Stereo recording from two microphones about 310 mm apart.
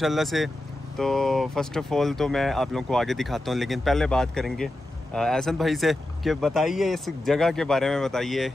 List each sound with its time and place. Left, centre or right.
0.0 s speech: centre